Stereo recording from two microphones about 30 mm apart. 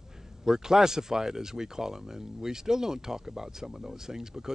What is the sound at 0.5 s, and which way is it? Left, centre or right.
Speech, centre.